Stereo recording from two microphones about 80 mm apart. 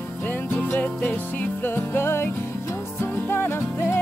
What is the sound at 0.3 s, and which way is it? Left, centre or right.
Music, left.